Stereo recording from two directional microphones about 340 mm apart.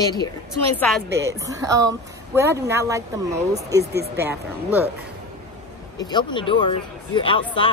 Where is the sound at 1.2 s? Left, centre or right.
Centre.